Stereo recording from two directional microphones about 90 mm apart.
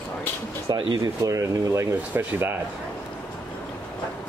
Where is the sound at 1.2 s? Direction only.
35° right (ahead or behind).